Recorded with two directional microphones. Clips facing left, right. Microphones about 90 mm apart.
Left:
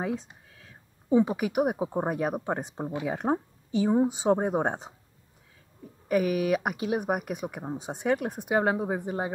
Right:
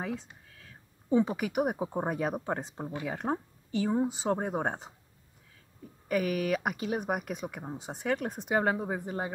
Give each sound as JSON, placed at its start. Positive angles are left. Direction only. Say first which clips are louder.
{"t": 0.0, "sound": "speech", "louder": "left 5 dB", "side_deg": 20}
{"t": 6.0, "sound": "speech", "louder": "left 4 dB", "side_deg": 15}